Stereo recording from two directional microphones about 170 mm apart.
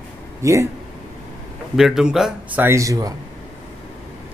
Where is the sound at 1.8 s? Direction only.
Centre (ahead or behind); by 3.2 s 20° right (ahead or behind).